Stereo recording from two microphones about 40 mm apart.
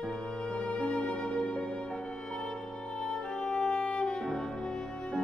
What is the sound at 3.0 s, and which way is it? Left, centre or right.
Music, centre.